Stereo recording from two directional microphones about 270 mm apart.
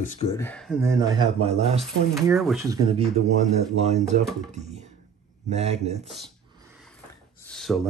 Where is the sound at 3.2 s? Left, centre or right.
Right.